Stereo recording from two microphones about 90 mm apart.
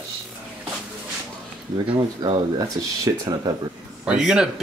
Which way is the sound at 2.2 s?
45° right (ahead or behind).